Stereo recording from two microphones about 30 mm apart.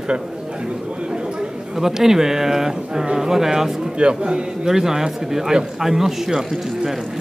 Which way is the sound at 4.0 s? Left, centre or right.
Right.